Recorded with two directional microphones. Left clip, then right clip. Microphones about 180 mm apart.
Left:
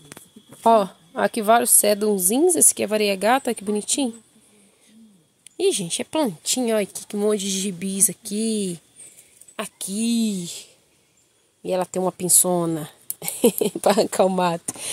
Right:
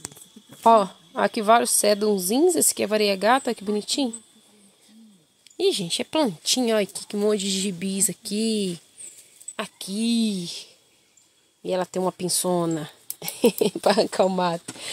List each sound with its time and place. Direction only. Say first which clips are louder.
0.6 s speech: even; 10° left (ahead or behind)
5.4 s speech: left 1 dB; 10° left (ahead or behind)